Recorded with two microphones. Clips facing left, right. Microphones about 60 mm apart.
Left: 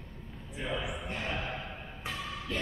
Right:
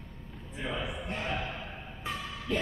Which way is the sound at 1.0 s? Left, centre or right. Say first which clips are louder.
Right 2 dB; centre.